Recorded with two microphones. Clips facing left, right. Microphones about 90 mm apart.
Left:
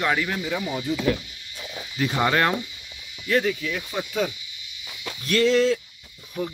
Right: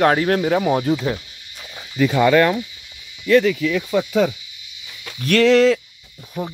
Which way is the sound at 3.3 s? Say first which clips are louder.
Right 8 dB; 90° right.